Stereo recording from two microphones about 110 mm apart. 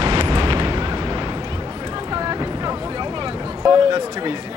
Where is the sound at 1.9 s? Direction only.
40° right (ahead or behind).